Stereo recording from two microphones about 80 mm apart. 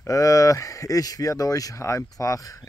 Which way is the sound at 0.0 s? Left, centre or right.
Left.